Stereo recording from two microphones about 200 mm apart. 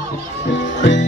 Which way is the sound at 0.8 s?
60° left (ahead or behind).